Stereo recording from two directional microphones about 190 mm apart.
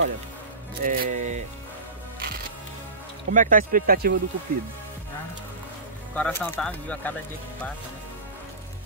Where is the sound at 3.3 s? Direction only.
45° right (ahead or behind).